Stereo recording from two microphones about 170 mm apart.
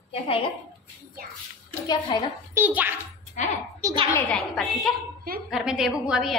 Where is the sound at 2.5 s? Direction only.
10° right (ahead or behind).